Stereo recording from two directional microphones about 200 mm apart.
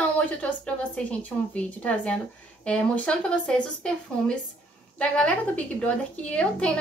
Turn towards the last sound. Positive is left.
turn(degrees=5)  # may be behind; listen again after turning